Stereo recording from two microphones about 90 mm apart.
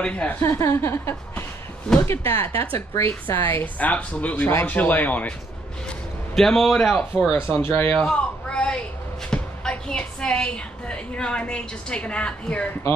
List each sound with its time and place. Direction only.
0.0 s speech: 15° left (ahead or behind)
0.4 s speech: 30° left (ahead or behind)
5.9 s a man's voice: 5° left (ahead or behind)
7.5 s speech: 25° left (ahead or behind)
8.0 s a sound: 10° left (ahead or behind)
9.3 s a woman's voice: 10° left (ahead or behind)